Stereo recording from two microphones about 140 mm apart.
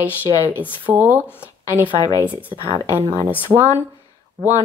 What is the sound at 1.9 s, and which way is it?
Speech, 30° left (ahead or behind).